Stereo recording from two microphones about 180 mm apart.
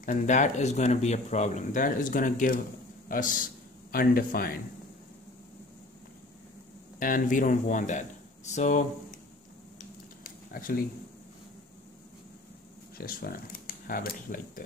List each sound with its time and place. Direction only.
0.0 s speech: 45° left (ahead or behind)
7.0 s speech: 50° left (ahead or behind)
9.8 s a sound: 50° left (ahead or behind)
12.9 s speech: 55° left (ahead or behind)